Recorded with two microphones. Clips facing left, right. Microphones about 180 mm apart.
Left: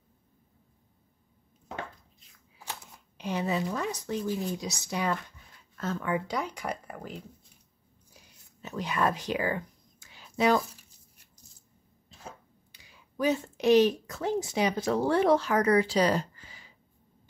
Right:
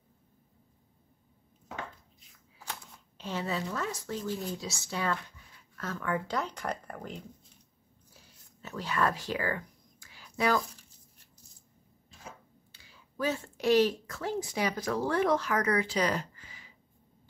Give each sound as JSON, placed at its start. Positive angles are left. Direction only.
{"t": 3.2, "sound": "speech", "side_deg": 15}
{"t": 8.1, "sound": "a sound", "side_deg": 15}
{"t": 12.7, "sound": "a woman's voice", "side_deg": 15}